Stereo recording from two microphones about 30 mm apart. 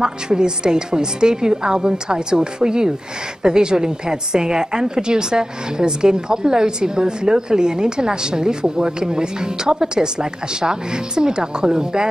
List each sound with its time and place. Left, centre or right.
0.0 s a woman's voice: right